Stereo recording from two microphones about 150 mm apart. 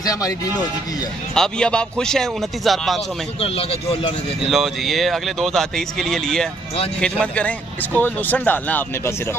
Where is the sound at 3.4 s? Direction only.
40° left (ahead or behind).